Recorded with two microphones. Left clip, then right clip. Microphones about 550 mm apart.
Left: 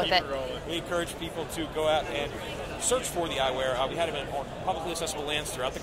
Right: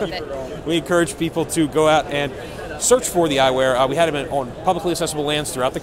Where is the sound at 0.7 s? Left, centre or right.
Right.